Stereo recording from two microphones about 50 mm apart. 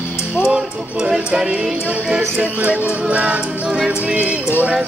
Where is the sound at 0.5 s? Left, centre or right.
Right.